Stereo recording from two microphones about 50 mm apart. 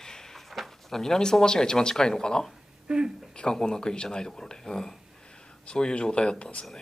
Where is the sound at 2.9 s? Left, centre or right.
Centre.